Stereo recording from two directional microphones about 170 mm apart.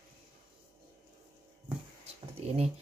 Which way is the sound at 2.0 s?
35° right (ahead or behind).